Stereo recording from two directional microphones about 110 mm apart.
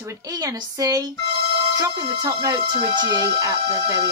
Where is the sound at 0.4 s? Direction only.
35° right (ahead or behind).